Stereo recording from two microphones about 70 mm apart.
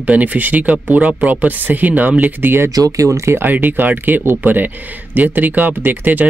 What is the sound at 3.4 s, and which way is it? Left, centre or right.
Speech, right.